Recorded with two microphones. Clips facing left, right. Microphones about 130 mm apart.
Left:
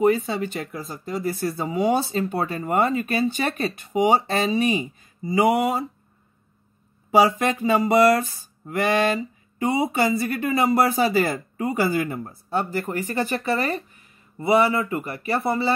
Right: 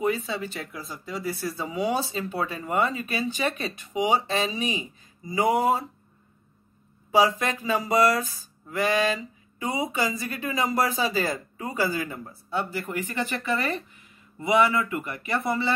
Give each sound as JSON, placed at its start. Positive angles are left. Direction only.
{"t": 0.0, "sound": "speech", "side_deg": 50}
{"t": 7.6, "sound": "a sound", "side_deg": 60}
{"t": 14.4, "sound": "a man's voice", "side_deg": 35}